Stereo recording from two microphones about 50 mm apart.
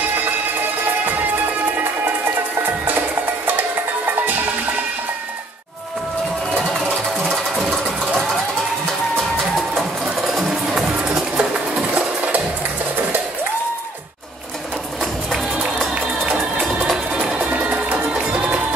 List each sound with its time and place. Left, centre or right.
7.5 s a sound: centre
10.2 s music: centre
11.9 s music: right
15.9 s music: right
16.8 s music: centre
17.2 s music: right